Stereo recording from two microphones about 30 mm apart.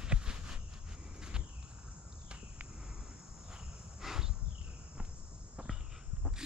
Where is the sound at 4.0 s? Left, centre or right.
Centre.